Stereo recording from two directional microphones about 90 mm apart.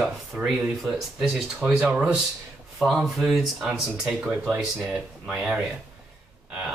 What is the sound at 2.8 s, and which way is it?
Speech, centre (ahead or behind).